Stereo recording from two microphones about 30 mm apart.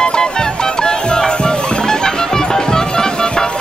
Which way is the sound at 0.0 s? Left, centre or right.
Left.